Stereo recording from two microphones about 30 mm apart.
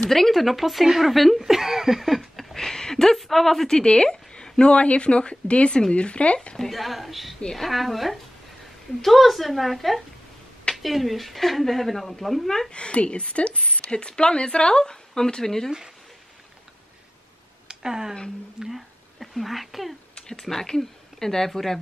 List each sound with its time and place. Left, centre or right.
0.0 s speech: centre
2.3 s a sound: centre
3.2 s speech: centre
3.6 s speech: left
4.6 s speech: left
6.7 s speech: centre
12.7 s speech: left; by 15.7 s centre
17.6 s a sound: right
18.6 s speech: centre
20.2 s a sound: left
20.4 s speech: centre